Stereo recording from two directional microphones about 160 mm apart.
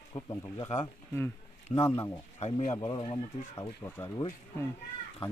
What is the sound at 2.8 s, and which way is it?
Speech, 30° left (ahead or behind).